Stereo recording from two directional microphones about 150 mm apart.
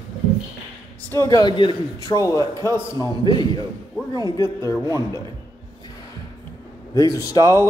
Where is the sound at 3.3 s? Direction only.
30° left (ahead or behind).